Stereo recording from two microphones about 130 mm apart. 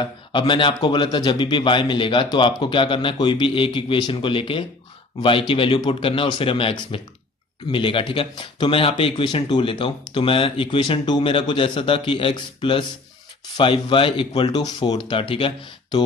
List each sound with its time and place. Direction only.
0.0 s speech: 40° left (ahead or behind)
13.6 s speech: 40° left (ahead or behind)